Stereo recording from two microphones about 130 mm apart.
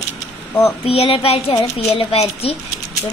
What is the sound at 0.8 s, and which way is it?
Speech, 50° left (ahead or behind).